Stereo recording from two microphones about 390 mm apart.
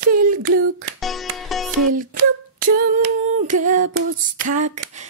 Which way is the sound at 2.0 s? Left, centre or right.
Right.